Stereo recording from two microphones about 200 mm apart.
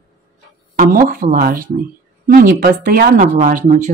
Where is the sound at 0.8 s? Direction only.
45° right (ahead or behind).